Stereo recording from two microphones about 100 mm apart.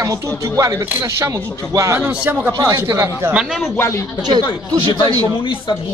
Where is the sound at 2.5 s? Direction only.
35° right (ahead or behind).